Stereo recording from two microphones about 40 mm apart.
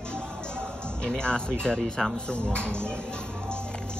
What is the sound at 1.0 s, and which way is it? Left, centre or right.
Speech, left.